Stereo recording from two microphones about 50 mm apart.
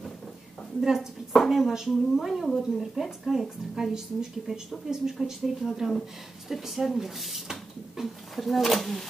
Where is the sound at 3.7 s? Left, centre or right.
Centre.